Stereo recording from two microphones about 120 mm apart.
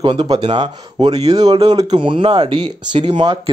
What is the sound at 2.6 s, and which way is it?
Speech, 55° right (ahead or behind).